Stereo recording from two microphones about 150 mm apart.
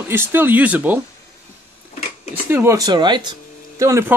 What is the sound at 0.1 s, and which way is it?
Speech, 15° right (ahead or behind).